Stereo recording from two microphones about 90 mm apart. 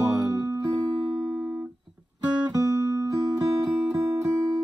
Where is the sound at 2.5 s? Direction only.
40° right (ahead or behind).